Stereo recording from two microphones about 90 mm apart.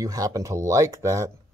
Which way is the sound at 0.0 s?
40° right (ahead or behind).